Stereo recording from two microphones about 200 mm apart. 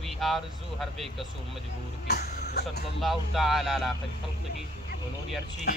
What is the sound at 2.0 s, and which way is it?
Speech, 55° left (ahead or behind).